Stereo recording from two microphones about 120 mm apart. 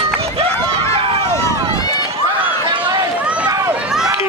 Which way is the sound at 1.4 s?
30° left (ahead or behind).